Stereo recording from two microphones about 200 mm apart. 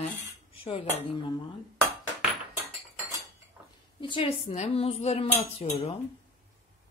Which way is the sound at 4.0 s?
25° left (ahead or behind).